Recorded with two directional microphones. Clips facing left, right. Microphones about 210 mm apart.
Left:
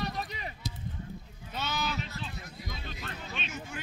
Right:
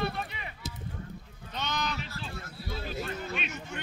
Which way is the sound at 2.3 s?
15° left (ahead or behind).